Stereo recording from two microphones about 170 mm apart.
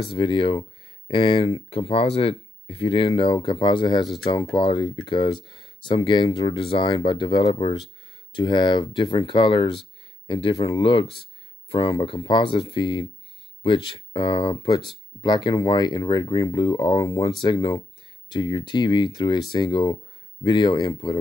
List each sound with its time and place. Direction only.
0.0 s speech: 30° left (ahead or behind)